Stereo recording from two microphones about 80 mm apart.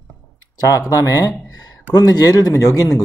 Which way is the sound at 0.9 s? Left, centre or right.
Left.